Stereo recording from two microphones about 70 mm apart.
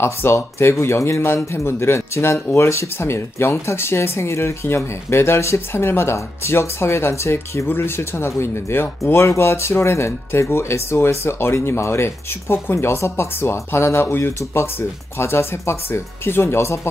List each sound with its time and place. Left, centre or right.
0.0 s speech: left